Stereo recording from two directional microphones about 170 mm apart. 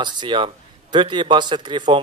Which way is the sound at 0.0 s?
25° right (ahead or behind).